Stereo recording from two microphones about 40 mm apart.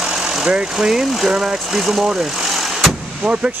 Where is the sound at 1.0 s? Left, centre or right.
Centre.